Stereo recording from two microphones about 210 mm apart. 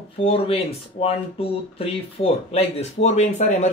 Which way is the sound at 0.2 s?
30° left (ahead or behind).